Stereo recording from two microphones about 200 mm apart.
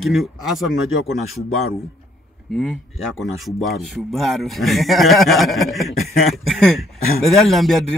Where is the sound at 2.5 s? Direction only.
5° left (ahead or behind).